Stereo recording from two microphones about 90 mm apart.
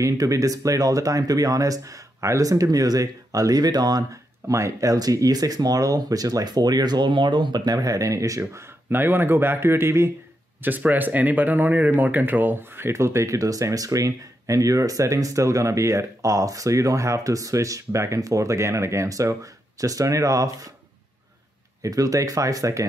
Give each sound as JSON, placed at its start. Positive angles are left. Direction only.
{"t": 0.0, "sound": "speech", "side_deg": -35}
{"t": 21.8, "sound": "speech", "side_deg": -40}